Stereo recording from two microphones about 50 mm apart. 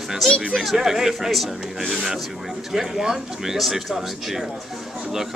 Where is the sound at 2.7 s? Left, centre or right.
Centre.